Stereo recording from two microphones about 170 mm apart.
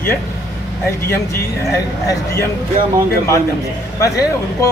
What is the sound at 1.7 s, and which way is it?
Speech, 15° left (ahead or behind).